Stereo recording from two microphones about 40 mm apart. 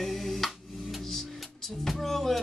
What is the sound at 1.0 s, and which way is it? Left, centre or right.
Music, centre.